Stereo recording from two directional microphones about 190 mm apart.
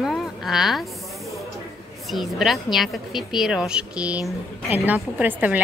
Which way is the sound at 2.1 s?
Centre (ahead or behind).